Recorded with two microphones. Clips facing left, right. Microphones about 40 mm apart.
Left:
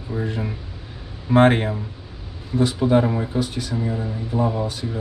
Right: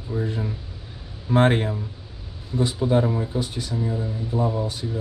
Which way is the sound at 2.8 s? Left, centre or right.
Left.